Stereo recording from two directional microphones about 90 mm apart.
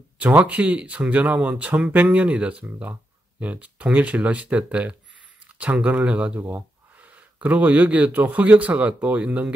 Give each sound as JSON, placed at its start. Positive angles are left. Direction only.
{"t": 0.2, "sound": "speech", "side_deg": -15}